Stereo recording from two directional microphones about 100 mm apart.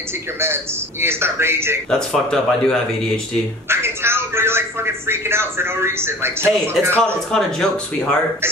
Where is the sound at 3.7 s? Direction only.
25° right (ahead or behind).